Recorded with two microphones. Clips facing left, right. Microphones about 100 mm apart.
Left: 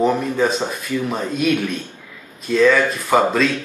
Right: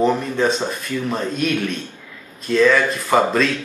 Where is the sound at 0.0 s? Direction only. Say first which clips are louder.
Even; 5° left (ahead or behind).